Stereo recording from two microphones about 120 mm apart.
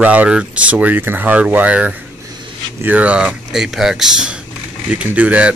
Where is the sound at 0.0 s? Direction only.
10° right (ahead or behind).